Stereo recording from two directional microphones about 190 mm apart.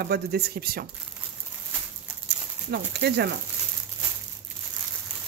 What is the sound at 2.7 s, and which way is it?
Speech, 60° right (ahead or behind).